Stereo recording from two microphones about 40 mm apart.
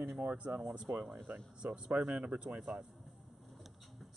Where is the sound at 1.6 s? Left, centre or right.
Right.